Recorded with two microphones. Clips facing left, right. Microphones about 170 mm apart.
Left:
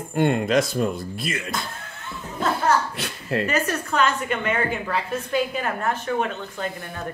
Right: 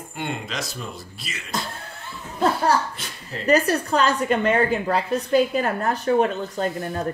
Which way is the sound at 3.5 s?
35° right (ahead or behind).